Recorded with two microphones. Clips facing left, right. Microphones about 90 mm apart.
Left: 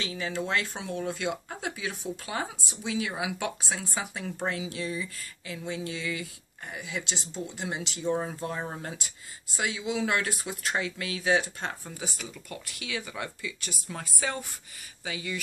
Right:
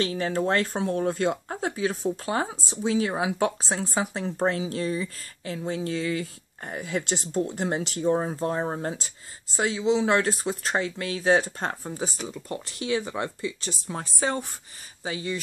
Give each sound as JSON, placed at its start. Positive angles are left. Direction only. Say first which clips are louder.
{"t": 0.0, "sound": "speech", "louder": "right 7 dB", "side_deg": -45}